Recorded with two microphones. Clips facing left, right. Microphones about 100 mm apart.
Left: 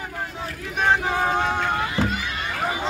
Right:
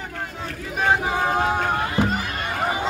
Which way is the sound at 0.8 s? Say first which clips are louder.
Even; 5° right (ahead or behind).